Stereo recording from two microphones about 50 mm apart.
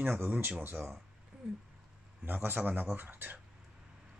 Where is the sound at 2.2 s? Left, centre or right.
Right.